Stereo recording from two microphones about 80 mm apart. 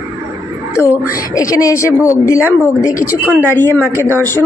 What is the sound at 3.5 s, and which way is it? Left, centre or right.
Speech, left.